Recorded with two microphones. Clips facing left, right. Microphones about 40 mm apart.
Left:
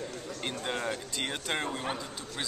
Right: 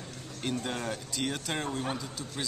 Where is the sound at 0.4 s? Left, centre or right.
Centre.